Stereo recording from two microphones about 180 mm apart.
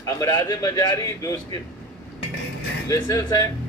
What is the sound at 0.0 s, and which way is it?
Speech, 20° left (ahead or behind).